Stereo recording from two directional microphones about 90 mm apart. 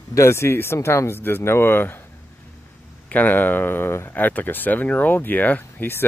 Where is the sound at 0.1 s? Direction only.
30° left (ahead or behind).